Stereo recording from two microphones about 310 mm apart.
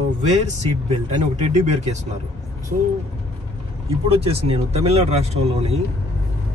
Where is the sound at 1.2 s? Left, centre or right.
Right.